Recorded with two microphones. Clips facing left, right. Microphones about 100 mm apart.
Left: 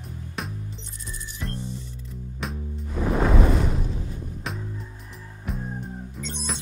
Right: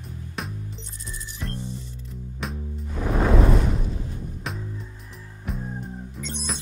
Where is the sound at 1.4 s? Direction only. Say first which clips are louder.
Even; centre (ahead or behind).